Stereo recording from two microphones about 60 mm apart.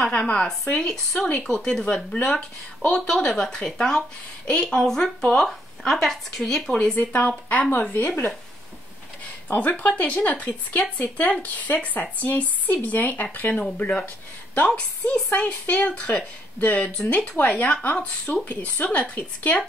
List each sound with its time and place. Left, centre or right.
0.0 s speech: centre
7.0 s speech: left
9.5 s speech: left
14.7 s speech: centre